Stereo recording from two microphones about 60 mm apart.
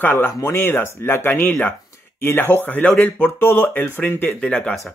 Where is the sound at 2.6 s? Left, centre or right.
Left.